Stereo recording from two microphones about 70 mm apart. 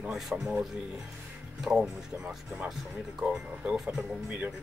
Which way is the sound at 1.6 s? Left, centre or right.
Centre.